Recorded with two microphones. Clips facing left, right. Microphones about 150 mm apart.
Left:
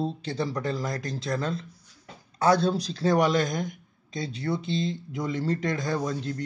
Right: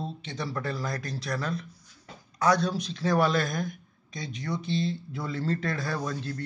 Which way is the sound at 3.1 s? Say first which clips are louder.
Left 2 dB; 20° left (ahead or behind).